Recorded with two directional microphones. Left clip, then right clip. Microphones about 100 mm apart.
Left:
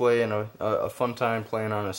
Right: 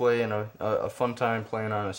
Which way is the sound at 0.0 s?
35° left (ahead or behind).